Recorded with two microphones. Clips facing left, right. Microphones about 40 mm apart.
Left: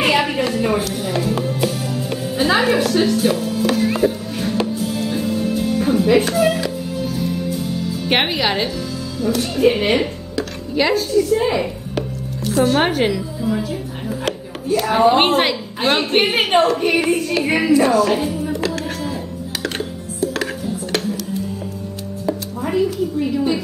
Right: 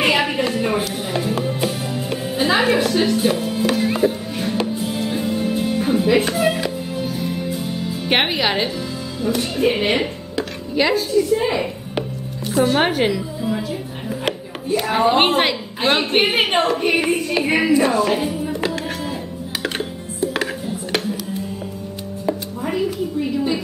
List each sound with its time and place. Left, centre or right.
0.0 s music: centre
3.6 s music: centre
4.7 s music: centre
8.1 s a woman's voice: centre
18.7 s music: centre
22.6 s a sound: centre